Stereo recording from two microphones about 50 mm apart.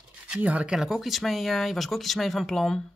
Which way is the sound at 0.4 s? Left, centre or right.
Right.